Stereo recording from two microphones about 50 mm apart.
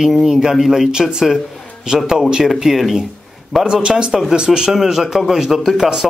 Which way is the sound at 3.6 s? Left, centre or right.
Centre.